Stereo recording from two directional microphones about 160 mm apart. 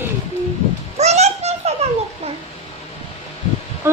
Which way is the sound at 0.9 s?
45° right (ahead or behind).